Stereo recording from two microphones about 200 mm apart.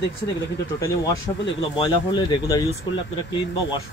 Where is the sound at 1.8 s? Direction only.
20° left (ahead or behind).